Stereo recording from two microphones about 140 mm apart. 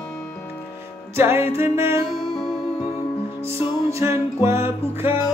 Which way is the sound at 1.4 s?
45° left (ahead or behind).